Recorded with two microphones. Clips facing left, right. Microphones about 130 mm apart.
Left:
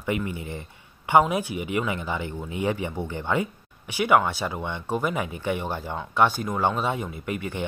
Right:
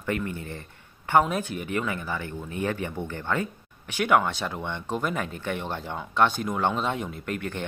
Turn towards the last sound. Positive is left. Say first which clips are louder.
# left 1 dB
turn(degrees=10)  # may be behind; listen again after turning